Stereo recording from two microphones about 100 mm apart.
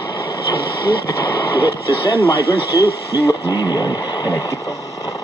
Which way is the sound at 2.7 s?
35° left (ahead or behind).